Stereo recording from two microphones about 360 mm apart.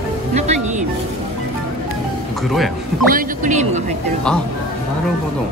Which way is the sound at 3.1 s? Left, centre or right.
Centre.